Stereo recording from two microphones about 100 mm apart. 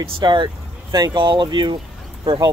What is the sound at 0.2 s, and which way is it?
Speech, 50° right (ahead or behind).